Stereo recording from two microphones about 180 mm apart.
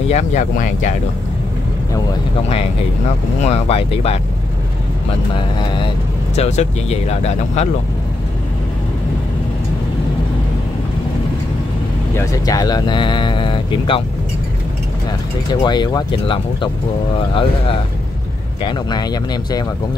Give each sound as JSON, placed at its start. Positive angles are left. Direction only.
{"t": 0.1, "sound": "speech", "side_deg": 40}
{"t": 3.4, "sound": "speech", "side_deg": 35}
{"t": 5.3, "sound": "speech", "side_deg": 25}
{"t": 6.3, "sound": "speech", "side_deg": 40}
{"t": 12.2, "sound": "speech", "side_deg": 20}
{"t": 15.6, "sound": "speech", "side_deg": 25}
{"t": 18.6, "sound": "speech", "side_deg": 25}